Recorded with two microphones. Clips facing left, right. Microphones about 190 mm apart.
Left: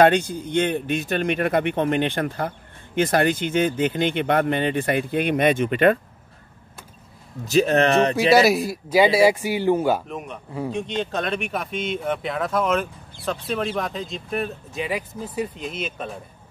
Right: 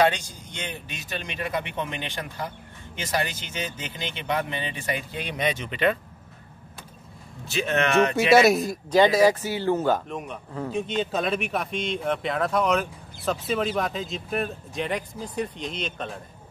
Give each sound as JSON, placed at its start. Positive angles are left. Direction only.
{"t": 0.0, "sound": "speech", "side_deg": 55}
{"t": 7.4, "sound": "speech", "side_deg": 40}
{"t": 8.3, "sound": "speech", "side_deg": 0}